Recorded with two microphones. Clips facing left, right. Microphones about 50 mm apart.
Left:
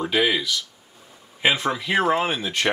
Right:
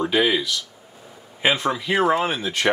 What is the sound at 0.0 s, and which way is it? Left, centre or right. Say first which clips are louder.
Speech: right 2 dB; centre.